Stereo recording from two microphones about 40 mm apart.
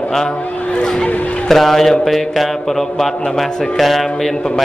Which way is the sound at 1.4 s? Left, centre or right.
Centre.